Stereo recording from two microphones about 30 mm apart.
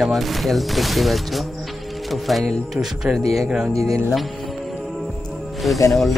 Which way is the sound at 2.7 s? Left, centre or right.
Centre.